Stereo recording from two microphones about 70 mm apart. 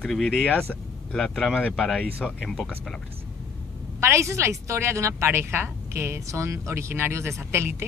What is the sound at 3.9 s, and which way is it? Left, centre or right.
Speech, right.